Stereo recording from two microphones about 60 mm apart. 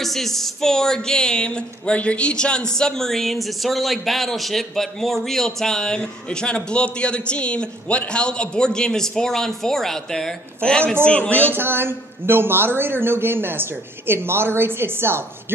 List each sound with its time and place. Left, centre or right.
0.0 s a man's voice: centre; by 11.5 s left
11.5 s a man's voice: right